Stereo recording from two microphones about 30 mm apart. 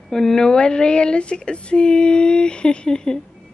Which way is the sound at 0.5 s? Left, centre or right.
Left.